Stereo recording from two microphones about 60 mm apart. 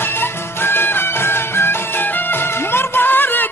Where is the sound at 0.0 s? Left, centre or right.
Left.